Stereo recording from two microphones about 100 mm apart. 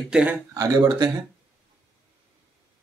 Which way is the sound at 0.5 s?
35° right (ahead or behind).